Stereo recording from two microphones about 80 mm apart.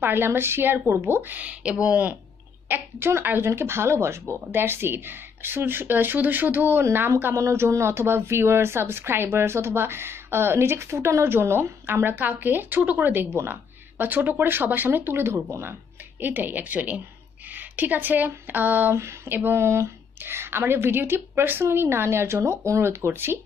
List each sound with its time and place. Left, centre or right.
0.0 s a woman's voice: right
2.7 s a woman's voice: right